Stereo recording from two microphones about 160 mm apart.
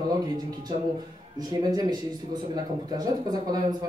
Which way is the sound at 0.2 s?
25° right (ahead or behind).